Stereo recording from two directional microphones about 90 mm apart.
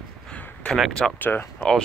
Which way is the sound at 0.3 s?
10° left (ahead or behind).